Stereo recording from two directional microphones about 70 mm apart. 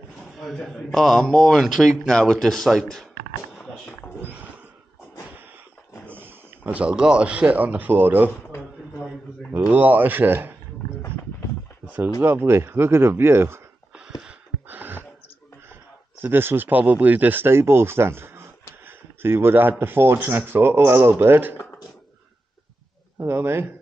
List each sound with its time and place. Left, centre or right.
0.4 s speech: centre
4.2 s a sound: right
6.0 s speech: right
9.7 s speech: right
12.2 s speech: right
13.9 s a sound: centre
14.7 s a sound: right
16.2 s speech: right
23.1 s speech: right